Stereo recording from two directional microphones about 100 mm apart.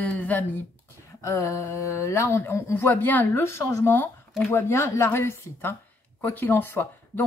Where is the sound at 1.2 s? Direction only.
30° left (ahead or behind).